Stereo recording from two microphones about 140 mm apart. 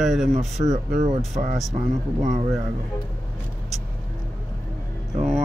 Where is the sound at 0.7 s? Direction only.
60° right (ahead or behind).